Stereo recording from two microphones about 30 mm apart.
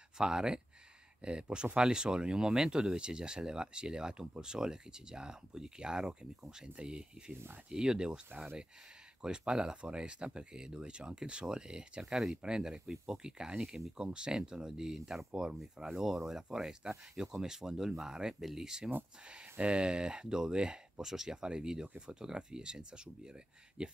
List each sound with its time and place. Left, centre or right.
0.2 s speech: right
8.3 s speech: right
9.2 s speech: right
12.9 s speech: centre
13.2 s speech: right
13.6 s speech: centre
13.9 s speech: right; by 18.7 s centre
19.2 s speech: right
21.0 s speech: centre